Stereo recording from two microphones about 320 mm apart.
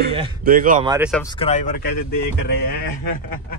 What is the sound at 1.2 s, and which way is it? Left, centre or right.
Speech, centre.